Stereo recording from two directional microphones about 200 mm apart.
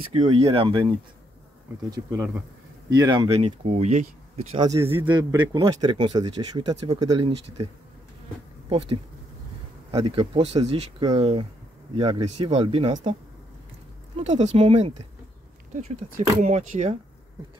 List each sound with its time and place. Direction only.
0.1 s speech: 30° right (ahead or behind)
3.3 s speech: 30° right (ahead or behind)
4.5 s speech: 20° right (ahead or behind)
5.0 s speech: 25° right (ahead or behind)
14.1 s speech: 30° right (ahead or behind)